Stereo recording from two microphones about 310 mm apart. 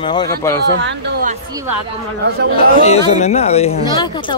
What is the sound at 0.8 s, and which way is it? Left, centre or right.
Speech, right.